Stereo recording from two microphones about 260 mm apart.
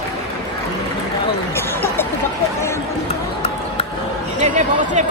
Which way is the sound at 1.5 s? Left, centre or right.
Centre.